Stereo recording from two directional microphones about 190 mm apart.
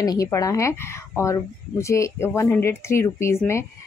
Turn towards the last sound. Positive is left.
turn(degrees=15)  # may be behind; listen again after turning